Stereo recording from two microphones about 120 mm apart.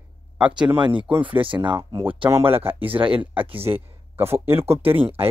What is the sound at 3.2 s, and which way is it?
Speech, 15° right (ahead or behind).